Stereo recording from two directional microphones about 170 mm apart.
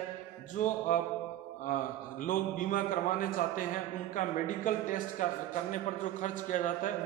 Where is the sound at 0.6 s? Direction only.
50° left (ahead or behind).